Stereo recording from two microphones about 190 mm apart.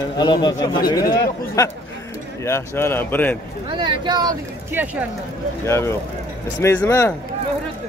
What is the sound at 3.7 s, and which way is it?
Speech, 25° right (ahead or behind).